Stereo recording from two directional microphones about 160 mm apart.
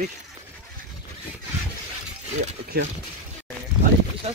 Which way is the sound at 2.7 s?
80° right.